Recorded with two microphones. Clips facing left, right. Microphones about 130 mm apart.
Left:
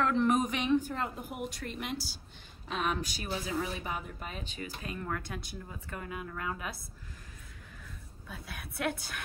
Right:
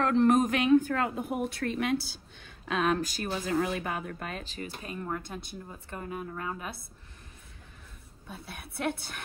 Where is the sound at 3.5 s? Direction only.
55° right (ahead or behind).